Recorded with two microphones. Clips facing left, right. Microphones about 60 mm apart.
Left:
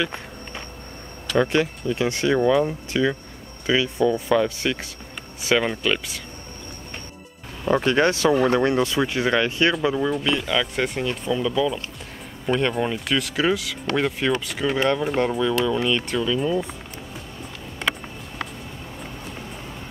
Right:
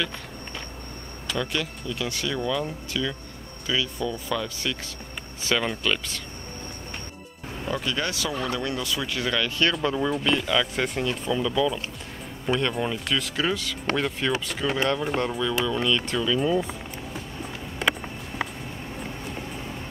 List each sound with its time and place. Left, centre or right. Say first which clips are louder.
0.0 s walk: left 4 dB; left
1.4 s speech: left 9 dB; left; by 6.2 s centre
7.6 s speech: left 9 dB; left
9.8 s speech: left 3 dB; centre
17.7 s a sound: right 1 dB; centre